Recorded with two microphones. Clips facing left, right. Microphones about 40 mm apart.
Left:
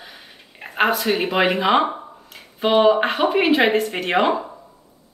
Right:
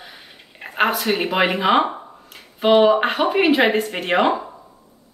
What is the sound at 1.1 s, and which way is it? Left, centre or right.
Speech, centre.